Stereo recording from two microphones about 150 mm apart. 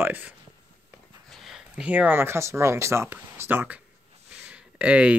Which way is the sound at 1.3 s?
Centre (ahead or behind).